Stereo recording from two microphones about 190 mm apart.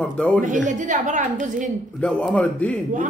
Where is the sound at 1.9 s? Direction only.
5° left (ahead or behind).